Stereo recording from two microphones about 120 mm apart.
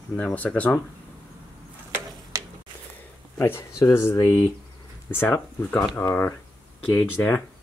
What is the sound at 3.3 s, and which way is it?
Speech, 20° left (ahead or behind).